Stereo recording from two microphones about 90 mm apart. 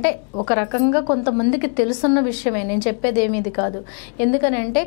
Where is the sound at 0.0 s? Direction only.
15° left (ahead or behind).